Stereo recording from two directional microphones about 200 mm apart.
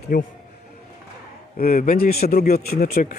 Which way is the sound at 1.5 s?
45° left (ahead or behind).